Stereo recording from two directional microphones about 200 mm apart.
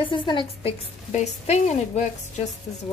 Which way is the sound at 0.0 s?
25° left (ahead or behind).